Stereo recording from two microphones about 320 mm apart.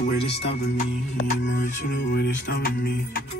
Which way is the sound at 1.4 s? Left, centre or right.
Left.